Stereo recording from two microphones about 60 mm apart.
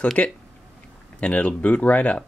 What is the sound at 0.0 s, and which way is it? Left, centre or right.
Speech, left.